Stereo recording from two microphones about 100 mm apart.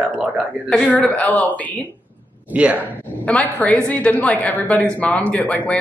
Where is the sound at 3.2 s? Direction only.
15° left (ahead or behind).